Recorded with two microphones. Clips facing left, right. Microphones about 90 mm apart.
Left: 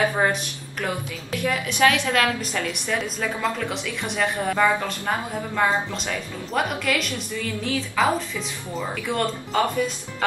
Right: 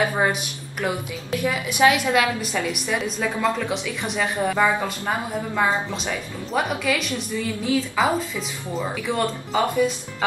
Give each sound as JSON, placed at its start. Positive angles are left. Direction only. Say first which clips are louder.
{"t": 0.1, "sound": "a woman's voice", "louder": "even", "side_deg": -10}